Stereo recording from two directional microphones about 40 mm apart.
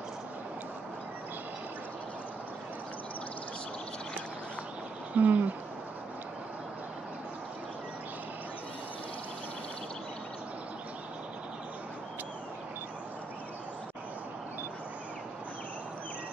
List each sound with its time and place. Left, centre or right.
5.1 s speech: right